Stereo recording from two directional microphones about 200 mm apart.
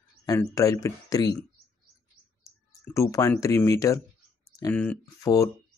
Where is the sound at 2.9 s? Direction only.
15° left (ahead or behind).